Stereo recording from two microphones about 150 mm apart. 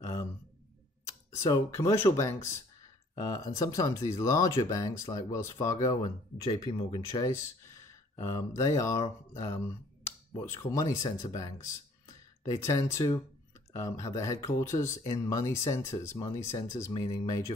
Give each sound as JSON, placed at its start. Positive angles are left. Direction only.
{"t": 0.0, "sound": "a sound", "side_deg": 20}
{"t": 1.0, "sound": "speech", "side_deg": 20}
{"t": 6.9, "sound": "speech", "side_deg": 25}